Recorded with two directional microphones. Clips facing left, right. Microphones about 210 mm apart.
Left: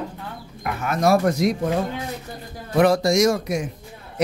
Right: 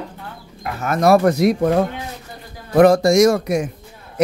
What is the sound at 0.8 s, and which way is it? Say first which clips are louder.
Speech: right 5 dB; 50° right (ahead or behind).